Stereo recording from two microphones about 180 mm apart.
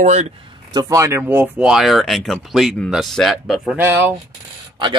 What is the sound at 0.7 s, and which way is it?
Speech, 15° right (ahead or behind).